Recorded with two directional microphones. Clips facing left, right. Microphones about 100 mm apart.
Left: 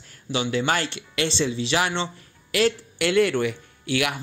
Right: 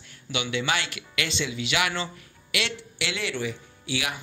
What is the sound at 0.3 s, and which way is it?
Speech, 35° left (ahead or behind).